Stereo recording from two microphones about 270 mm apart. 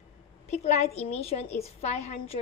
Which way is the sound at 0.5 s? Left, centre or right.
Left.